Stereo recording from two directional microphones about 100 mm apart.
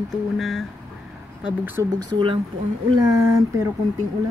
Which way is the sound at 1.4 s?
20° right (ahead or behind).